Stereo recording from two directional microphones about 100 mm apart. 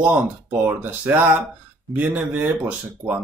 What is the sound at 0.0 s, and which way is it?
Speech, 15° right (ahead or behind).